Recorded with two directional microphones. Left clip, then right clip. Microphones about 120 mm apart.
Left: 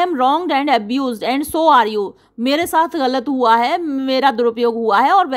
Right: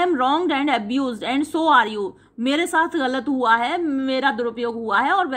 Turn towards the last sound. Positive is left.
turn(degrees=85)